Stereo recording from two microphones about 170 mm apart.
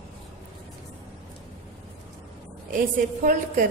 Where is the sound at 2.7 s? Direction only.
55° right (ahead or behind).